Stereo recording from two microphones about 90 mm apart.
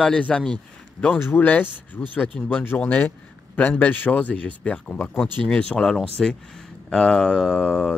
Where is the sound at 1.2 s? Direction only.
20° left (ahead or behind).